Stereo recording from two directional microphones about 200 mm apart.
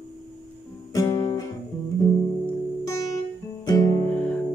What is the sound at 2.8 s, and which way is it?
Music, 15° left (ahead or behind).